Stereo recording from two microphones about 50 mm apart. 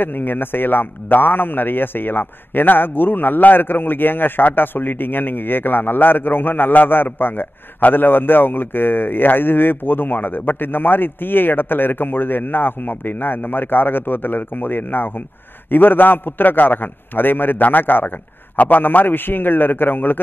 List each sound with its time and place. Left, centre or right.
0.0 s a man's voice: left